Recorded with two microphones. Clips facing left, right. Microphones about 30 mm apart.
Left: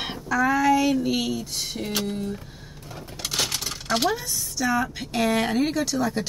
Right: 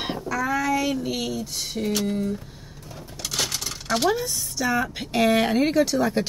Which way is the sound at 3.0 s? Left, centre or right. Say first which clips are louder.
Left 1 dB; left.